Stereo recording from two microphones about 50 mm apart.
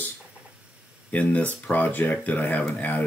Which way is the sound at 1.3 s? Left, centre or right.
Left.